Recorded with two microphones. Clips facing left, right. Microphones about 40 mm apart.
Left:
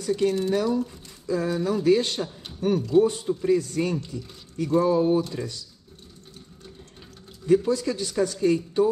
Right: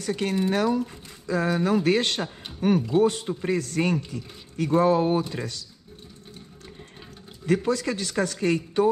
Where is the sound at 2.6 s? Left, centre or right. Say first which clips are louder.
Left 1 dB; right.